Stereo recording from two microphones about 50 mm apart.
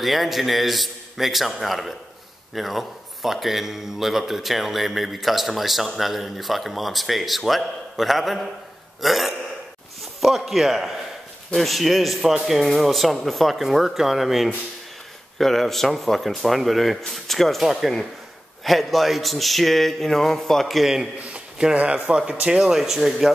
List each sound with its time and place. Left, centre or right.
0.0 s a man's voice: centre
21.2 s a sound: right
21.7 s speech: right; by 23.1 s centre